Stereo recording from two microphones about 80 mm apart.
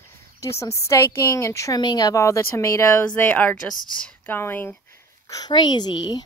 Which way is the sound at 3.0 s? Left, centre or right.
Left.